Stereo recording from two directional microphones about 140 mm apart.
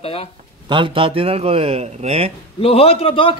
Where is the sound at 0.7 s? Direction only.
40° right (ahead or behind).